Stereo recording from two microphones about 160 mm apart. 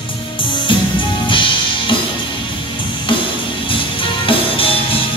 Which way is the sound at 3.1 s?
30° left (ahead or behind).